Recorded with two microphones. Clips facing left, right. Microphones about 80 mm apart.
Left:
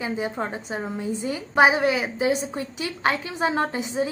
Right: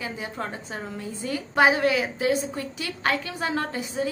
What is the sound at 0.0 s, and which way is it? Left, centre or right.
A woman's voice, left.